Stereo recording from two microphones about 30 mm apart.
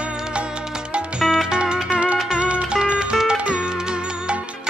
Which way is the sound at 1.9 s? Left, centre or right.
Right.